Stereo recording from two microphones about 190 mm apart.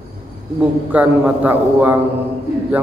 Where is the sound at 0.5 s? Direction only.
10° right (ahead or behind).